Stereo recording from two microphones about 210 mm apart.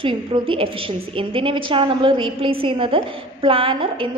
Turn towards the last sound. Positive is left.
turn(degrees=-25)  # may be behind; listen again after turning